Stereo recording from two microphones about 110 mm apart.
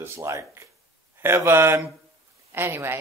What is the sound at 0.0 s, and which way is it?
Speech, 25° right (ahead or behind).